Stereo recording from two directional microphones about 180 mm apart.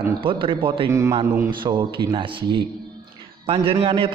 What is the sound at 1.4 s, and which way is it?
A man's voice, 25° right (ahead or behind).